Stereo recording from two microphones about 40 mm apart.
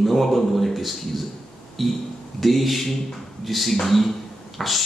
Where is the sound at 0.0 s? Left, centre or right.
Centre.